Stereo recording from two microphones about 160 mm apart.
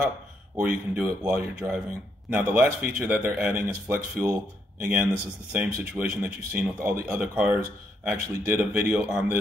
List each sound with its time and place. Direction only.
0.7 s speech: 10° right (ahead or behind)